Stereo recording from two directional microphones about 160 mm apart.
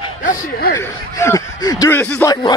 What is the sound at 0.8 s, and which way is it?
Speech, 15° left (ahead or behind).